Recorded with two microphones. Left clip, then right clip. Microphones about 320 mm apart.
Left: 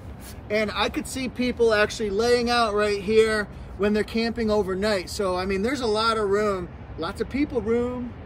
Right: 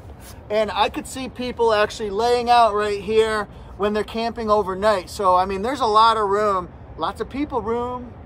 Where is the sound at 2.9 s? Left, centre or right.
Centre.